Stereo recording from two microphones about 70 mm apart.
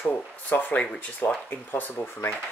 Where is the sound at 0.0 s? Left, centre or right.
Left.